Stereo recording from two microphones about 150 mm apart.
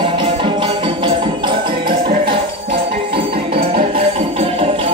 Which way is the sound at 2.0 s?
75° right (ahead or behind).